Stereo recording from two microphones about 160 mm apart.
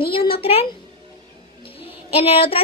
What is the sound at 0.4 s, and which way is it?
Speech, 40° left (ahead or behind).